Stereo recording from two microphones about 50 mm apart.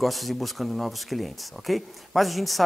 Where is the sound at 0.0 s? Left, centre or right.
Centre.